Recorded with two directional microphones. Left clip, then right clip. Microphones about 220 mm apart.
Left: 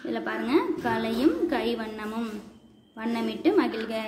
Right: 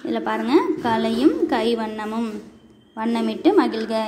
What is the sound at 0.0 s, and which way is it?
A woman's voice, 20° right (ahead or behind).